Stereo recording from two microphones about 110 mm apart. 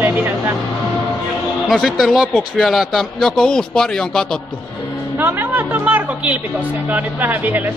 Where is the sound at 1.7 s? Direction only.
Centre (ahead or behind).